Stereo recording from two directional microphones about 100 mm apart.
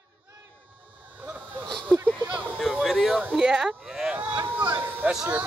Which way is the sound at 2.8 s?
Centre (ahead or behind).